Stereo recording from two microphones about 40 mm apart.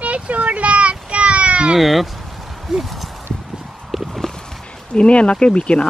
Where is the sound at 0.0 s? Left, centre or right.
Right.